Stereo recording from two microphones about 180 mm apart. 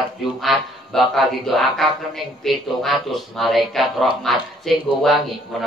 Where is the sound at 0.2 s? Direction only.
Centre (ahead or behind).